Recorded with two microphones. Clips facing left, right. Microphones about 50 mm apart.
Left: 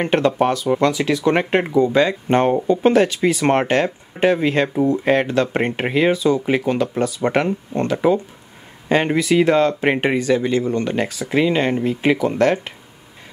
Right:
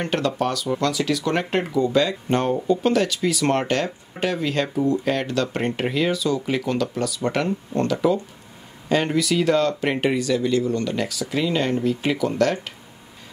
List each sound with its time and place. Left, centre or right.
0.0 s speech: left